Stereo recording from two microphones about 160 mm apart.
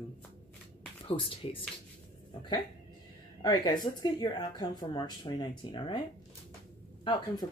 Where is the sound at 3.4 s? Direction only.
25° left (ahead or behind).